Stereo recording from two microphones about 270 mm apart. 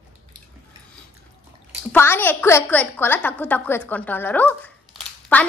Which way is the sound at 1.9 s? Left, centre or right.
Centre.